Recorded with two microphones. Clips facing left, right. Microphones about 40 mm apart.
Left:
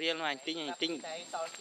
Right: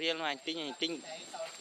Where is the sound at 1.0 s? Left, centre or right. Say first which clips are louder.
Left 4 dB; left.